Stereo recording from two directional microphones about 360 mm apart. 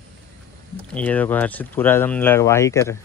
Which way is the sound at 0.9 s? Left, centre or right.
Centre.